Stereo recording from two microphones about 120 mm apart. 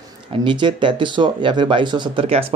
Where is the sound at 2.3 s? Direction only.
55° right (ahead or behind).